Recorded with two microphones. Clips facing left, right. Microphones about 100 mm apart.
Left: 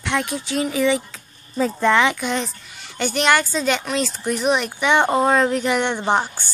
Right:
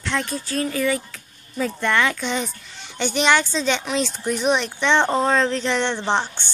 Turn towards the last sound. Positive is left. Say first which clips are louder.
# left 2 dB
turn(degrees=10)  # may be behind; listen again after turning